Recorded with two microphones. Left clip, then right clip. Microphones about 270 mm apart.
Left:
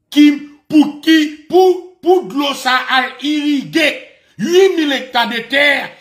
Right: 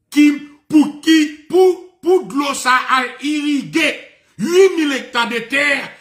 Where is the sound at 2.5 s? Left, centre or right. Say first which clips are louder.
Right 1 dB; right.